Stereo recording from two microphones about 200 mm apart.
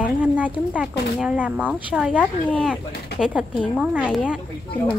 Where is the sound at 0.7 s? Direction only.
5° right (ahead or behind).